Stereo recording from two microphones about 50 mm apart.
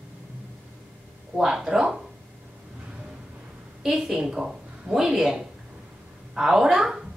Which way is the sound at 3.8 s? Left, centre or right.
Centre.